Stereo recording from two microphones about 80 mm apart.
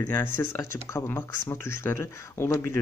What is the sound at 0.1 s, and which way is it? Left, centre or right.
Speech, left.